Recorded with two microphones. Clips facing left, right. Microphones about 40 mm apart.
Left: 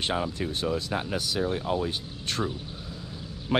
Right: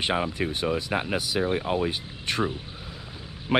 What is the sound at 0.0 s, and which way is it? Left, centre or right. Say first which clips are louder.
Speech: right 3 dB; right.